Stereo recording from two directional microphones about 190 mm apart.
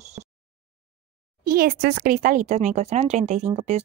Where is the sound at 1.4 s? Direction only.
50° right (ahead or behind).